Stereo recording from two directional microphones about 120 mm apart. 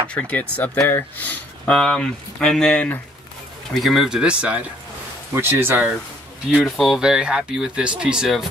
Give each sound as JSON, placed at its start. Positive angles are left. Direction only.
{"t": 0.1, "sound": "speech", "side_deg": 10}
{"t": 6.5, "sound": "speech", "side_deg": 0}